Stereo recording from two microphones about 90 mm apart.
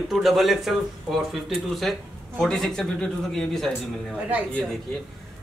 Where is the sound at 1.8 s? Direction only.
5° left (ahead or behind).